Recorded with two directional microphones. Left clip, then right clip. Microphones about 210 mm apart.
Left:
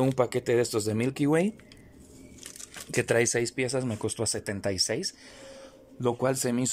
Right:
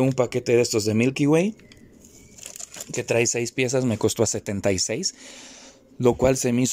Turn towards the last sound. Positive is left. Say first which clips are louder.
# right 7 dB
turn(degrees=-15)  # may be behind; listen again after turning